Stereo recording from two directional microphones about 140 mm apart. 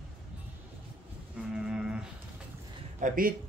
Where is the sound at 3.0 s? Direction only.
90° right.